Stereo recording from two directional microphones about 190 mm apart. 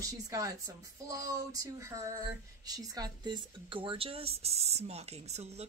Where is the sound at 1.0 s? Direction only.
15° right (ahead or behind).